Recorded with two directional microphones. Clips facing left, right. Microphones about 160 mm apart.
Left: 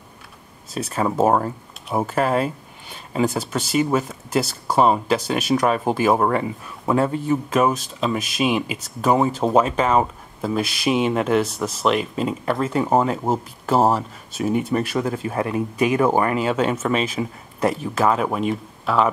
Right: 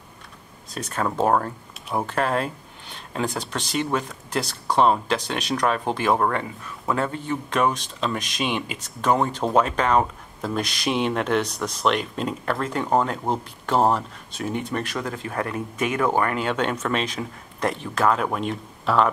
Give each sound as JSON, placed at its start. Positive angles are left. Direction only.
{"t": 0.7, "sound": "speech", "side_deg": 5}